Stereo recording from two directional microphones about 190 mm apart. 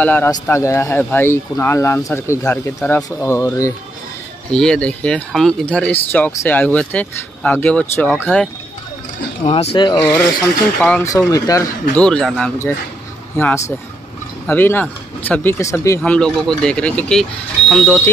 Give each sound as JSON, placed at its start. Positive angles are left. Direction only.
{"t": 0.0, "sound": "speech", "side_deg": 10}
{"t": 4.5, "sound": "speech", "side_deg": 5}
{"t": 9.5, "sound": "speech", "side_deg": 35}
{"t": 10.1, "sound": "speech", "side_deg": 10}
{"t": 11.9, "sound": "speech", "side_deg": 5}
{"t": 16.0, "sound": "speech", "side_deg": 5}